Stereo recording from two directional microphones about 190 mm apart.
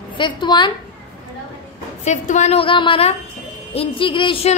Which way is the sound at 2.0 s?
40° left (ahead or behind).